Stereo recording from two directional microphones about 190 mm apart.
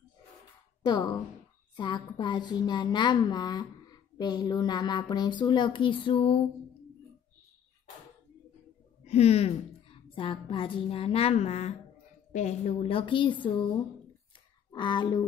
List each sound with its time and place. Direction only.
0.8 s a woman's voice: 20° left (ahead or behind)
9.0 s a woman's voice: 35° left (ahead or behind)